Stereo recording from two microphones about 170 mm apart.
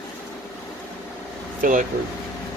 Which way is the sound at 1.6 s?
50° right (ahead or behind).